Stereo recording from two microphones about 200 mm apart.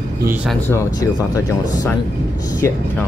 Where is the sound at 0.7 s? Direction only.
15° left (ahead or behind).